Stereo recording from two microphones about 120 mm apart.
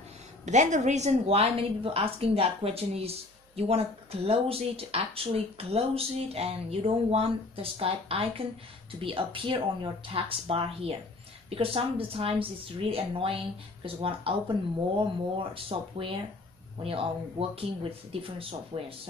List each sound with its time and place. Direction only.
0.5 s a woman's voice: 85° right; by 18.9 s 50° right (ahead or behind)